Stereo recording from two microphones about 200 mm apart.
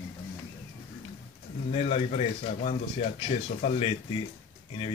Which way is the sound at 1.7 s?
30° left (ahead or behind).